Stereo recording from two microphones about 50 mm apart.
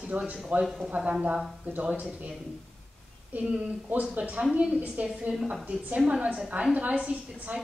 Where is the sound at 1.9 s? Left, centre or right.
Centre.